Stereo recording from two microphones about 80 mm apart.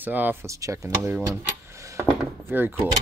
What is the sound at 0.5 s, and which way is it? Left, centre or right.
Speech, right.